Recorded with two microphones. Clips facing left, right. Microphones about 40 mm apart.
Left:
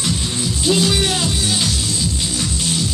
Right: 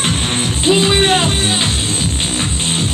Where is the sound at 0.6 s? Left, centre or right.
Right.